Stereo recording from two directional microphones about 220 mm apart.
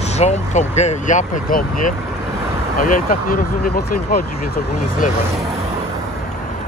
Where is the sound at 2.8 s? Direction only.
40° left (ahead or behind).